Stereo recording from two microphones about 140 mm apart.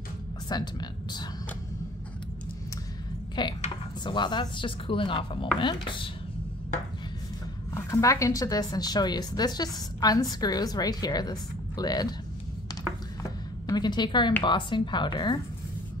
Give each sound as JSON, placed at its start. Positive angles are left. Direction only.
{"t": 0.5, "sound": "speech", "side_deg": 30}
{"t": 3.4, "sound": "speech", "side_deg": 30}
{"t": 7.7, "sound": "speech", "side_deg": 25}
{"t": 13.7, "sound": "speech", "side_deg": 30}